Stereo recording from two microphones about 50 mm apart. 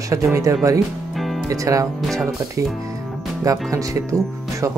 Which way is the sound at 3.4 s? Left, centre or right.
Right.